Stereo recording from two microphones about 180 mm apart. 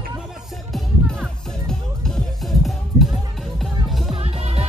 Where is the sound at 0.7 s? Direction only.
Centre (ahead or behind).